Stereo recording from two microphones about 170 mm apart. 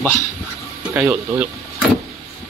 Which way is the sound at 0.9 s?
10° right (ahead or behind).